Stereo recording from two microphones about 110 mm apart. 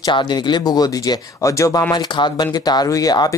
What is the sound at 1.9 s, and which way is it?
Speech, 40° left (ahead or behind).